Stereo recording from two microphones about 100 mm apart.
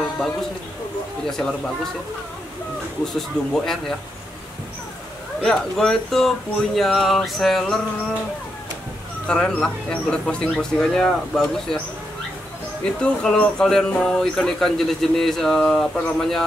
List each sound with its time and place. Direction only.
3.2 s speech: 5° left (ahead or behind)
5.4 s speech: 5° left (ahead or behind)
9.3 s speech: 10° left (ahead or behind)
12.8 s speech: 10° left (ahead or behind)